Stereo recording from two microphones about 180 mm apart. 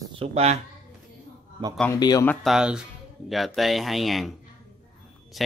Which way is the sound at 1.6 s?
30° right (ahead or behind).